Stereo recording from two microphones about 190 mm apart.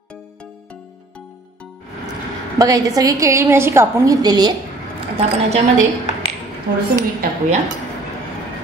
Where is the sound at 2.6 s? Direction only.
20° right (ahead or behind).